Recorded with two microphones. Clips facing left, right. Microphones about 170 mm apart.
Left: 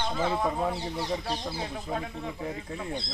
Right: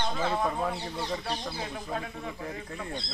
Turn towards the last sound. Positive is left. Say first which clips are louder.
# left 2 dB
turn(degrees=15)  # may be behind; listen again after turning